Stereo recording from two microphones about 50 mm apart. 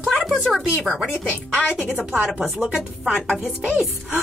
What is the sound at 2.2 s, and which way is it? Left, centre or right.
Speech, right.